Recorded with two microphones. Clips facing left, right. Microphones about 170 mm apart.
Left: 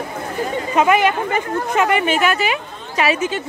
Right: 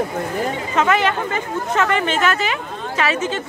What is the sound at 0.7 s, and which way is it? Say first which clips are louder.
Speech: left 3 dB; 15° left (ahead or behind).